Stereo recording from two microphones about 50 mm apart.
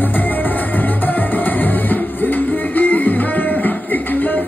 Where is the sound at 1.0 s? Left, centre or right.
Left.